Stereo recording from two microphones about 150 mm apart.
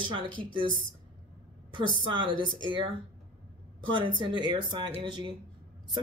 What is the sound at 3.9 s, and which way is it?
Speech, 30° right (ahead or behind).